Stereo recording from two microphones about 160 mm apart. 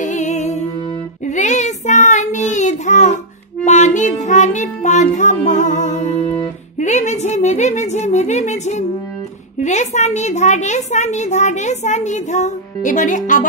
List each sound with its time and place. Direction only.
0.0 s music: 50° left (ahead or behind)
1.2 s child singing: 50° left (ahead or behind)
6.8 s a sound: 45° left (ahead or behind)